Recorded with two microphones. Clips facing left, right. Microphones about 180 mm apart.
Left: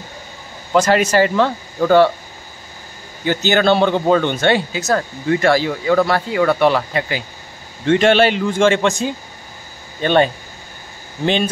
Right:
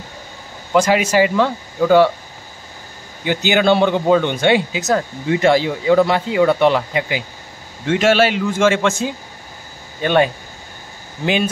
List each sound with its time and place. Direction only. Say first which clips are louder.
0.7 s speech: even; 10° right (ahead or behind)
3.3 s speech: even; 15° right (ahead or behind)
7.8 s a man's voice: left 2 dB; 5° right (ahead or behind)
10.0 s speech: left 1 dB; 10° right (ahead or behind)